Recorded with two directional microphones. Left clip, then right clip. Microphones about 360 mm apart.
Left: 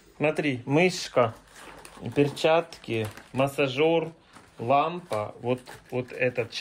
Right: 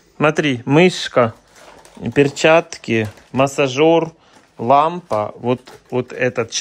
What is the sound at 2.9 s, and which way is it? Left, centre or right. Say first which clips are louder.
Speech: right 11 dB; right.